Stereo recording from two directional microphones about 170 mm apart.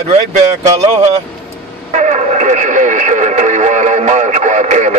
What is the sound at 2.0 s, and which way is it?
Radio, 45° right (ahead or behind).